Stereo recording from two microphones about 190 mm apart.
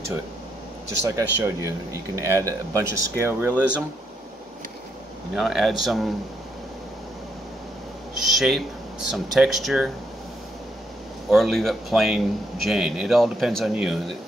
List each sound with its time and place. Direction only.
1.0 s speech: 15° right (ahead or behind)
5.3 s a man's voice: centre (ahead or behind)
8.4 s a man's voice: centre (ahead or behind)
11.2 s a man's voice: centre (ahead or behind)